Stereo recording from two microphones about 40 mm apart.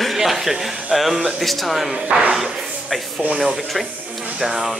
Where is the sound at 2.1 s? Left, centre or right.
Right.